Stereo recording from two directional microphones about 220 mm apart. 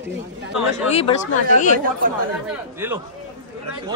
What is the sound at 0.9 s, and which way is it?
Speech, 30° left (ahead or behind).